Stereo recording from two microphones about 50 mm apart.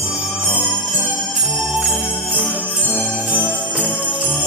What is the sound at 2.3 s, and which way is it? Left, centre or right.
Jingle bell, right.